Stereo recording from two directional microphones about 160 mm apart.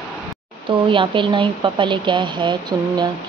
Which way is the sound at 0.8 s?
30° right (ahead or behind).